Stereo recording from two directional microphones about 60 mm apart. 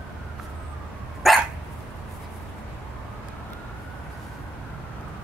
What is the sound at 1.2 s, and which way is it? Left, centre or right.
Dog, centre.